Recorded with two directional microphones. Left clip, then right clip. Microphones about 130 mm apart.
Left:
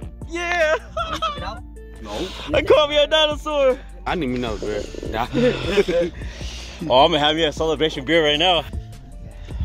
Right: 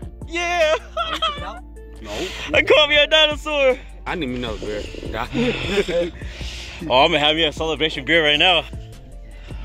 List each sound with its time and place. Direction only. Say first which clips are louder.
0.3 s a sound: right 1 dB; 5° left (ahead or behind)
2.0 s speech: right 1 dB; 10° left (ahead or behind)
4.5 s speech: left 2 dB; 40° left (ahead or behind)
8.1 s speech: right 2 dB; 25° left (ahead or behind)